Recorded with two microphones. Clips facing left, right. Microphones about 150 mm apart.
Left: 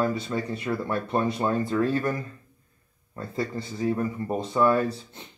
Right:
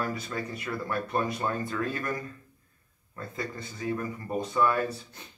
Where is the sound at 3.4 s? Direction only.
30° left (ahead or behind).